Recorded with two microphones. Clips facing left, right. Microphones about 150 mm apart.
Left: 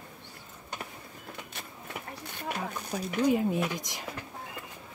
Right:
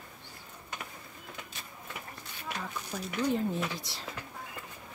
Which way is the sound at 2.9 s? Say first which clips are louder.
Left 5 dB; 15° left (ahead or behind).